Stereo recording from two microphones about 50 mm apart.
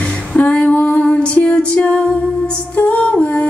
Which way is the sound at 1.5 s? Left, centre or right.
Left.